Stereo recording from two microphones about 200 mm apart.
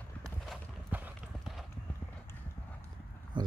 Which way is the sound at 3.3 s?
20° right (ahead or behind).